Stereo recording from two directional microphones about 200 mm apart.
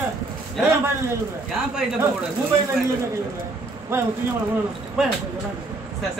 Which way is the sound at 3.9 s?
10° right (ahead or behind).